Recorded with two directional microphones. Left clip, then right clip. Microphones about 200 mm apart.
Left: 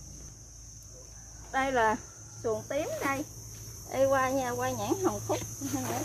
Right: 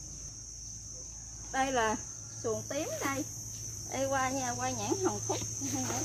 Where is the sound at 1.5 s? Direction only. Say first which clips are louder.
Left 3 dB; 15° left (ahead or behind); by 3.2 s 30° left (ahead or behind).